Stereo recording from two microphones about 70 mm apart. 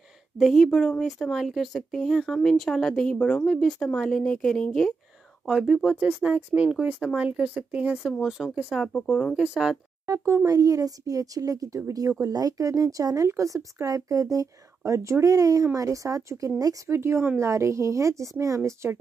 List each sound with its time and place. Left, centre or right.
0.4 s speech: centre
5.5 s speech: centre
5.9 s speech: centre
8.2 s speech: centre
9.4 s speech: centre
10.0 s speech: right
16.9 s speech: right
18.6 s speech: right